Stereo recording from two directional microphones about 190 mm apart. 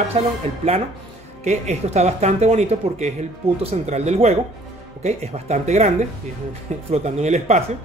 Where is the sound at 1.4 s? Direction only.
35° right (ahead or behind).